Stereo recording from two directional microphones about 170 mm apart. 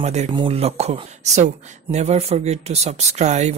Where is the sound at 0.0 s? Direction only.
40° right (ahead or behind).